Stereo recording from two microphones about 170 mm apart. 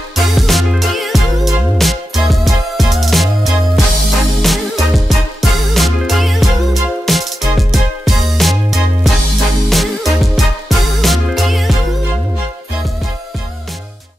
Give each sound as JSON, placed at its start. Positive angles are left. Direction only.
{"t": 0.1, "sound": "music", "side_deg": 0}